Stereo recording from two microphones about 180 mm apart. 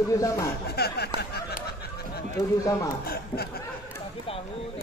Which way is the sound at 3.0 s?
60° left (ahead or behind).